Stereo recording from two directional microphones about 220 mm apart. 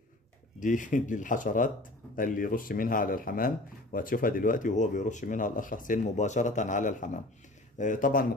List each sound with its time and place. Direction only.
0.6 s speech: 35° left (ahead or behind)